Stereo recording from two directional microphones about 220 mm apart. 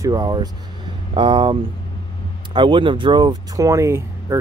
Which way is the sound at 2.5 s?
20° right (ahead or behind).